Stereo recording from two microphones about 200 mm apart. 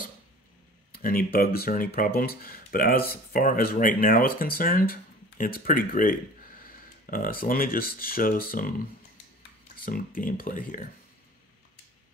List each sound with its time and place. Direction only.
0.9 s speech: 45° left (ahead or behind)
9.8 s speech: 45° left (ahead or behind)